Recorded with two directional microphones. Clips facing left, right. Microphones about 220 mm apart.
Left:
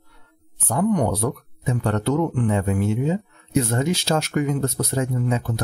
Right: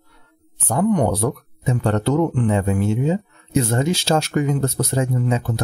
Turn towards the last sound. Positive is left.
turn(degrees=-25)  # may be behind; listen again after turning